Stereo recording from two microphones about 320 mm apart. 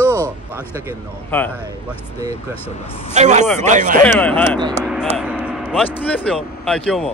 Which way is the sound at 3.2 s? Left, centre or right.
Right.